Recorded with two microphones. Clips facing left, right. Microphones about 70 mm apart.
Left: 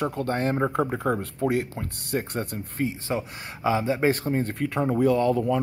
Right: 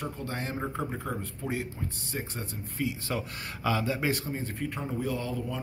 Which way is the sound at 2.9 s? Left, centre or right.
Left.